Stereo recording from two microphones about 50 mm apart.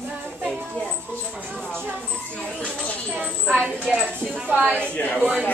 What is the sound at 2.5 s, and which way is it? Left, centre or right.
Speech, centre.